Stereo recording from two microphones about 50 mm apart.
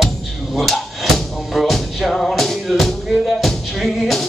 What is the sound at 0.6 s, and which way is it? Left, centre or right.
Music, centre.